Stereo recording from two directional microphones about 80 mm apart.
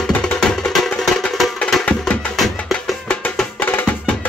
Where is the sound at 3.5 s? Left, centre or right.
Left.